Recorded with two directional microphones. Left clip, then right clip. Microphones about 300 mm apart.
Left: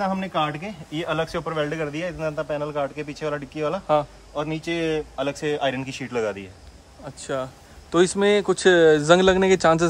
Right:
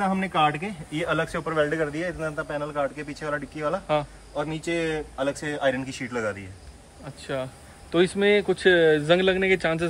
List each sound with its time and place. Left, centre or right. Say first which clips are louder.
0.0 s speech: right 1 dB; centre
7.9 s speech: left 2 dB; centre
8.7 s speech: left 5 dB; left